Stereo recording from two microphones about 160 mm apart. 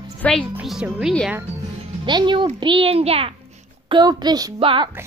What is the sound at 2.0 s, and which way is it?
A child's voice, 30° right (ahead or behind).